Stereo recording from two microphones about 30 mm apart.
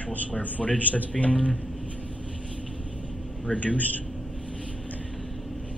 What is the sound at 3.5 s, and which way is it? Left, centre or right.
Speech, left.